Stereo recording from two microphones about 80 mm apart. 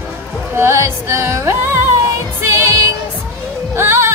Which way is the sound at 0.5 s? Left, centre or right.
Right.